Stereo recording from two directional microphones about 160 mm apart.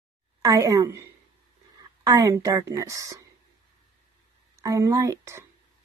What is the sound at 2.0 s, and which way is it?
A woman's voice, 20° right (ahead or behind).